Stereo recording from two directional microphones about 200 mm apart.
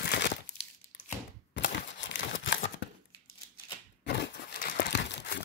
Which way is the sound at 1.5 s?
65° left (ahead or behind).